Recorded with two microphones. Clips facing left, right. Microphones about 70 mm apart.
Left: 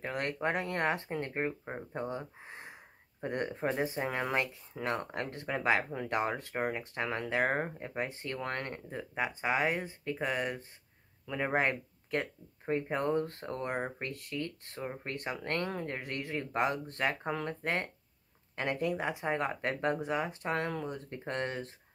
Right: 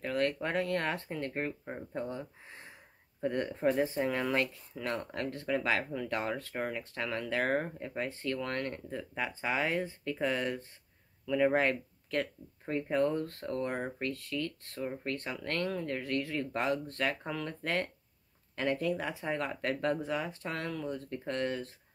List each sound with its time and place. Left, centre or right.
0.0 s speech: left